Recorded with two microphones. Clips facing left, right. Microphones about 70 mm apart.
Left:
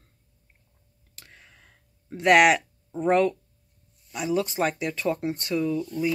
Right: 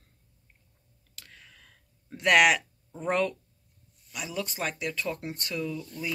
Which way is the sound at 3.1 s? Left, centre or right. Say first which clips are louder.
Left 6 dB; left.